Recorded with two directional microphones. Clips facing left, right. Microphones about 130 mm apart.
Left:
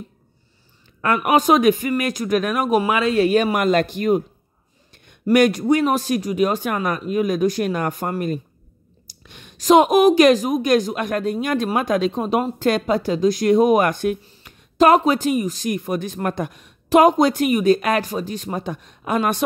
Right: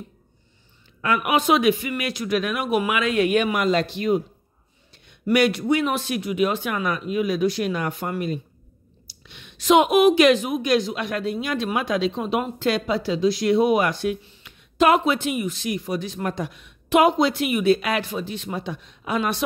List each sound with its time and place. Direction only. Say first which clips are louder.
1.0 s a woman's voice: left 4 dB; 45° left (ahead or behind)
3.5 s a woman's voice: left 3 dB; 50° left (ahead or behind)